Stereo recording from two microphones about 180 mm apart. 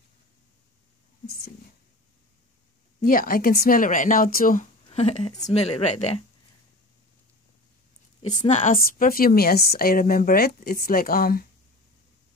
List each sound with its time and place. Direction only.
1.2 s a sound: 60° left (ahead or behind)
3.1 s speech: 50° left (ahead or behind)
4.8 s speech: 35° left (ahead or behind)
8.2 s a woman's voice: 40° left (ahead or behind); by 11.4 s 55° left (ahead or behind)